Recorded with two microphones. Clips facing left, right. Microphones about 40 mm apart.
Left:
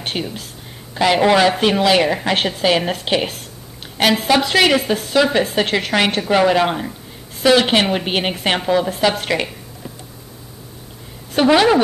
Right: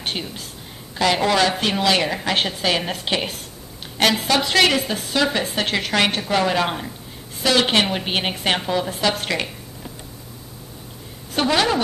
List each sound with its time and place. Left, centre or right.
0.0 s a woman's voice: centre
11.4 s a woman's voice: centre